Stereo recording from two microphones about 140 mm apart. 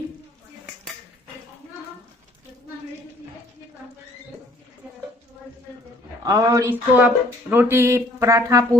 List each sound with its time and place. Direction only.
6.2 s speech: 25° right (ahead or behind)